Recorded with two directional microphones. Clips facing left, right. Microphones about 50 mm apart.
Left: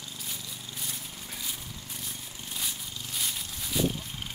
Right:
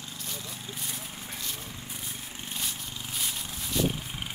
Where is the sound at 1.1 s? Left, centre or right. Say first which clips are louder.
Right 1 dB; centre.